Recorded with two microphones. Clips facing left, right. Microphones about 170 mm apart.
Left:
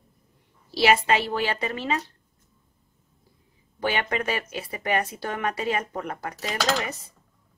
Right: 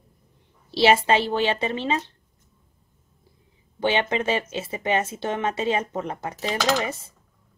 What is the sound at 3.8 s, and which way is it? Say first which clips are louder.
Speech: right 4 dB; 25° right (ahead or behind).